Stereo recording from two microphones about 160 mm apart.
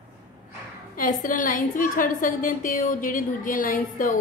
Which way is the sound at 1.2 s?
55° left (ahead or behind).